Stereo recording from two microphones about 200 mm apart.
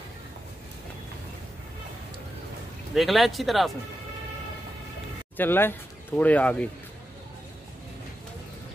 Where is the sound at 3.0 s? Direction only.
Centre (ahead or behind).